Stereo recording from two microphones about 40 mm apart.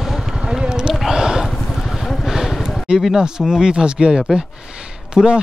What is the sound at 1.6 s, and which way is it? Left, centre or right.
Vehicle, centre.